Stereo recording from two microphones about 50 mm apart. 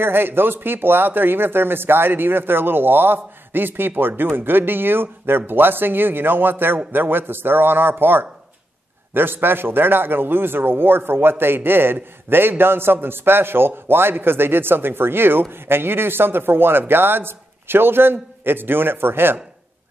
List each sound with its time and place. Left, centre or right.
0.0 s a man's voice: right